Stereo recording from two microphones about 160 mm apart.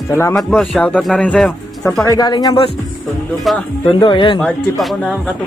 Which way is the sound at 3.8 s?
30° left (ahead or behind).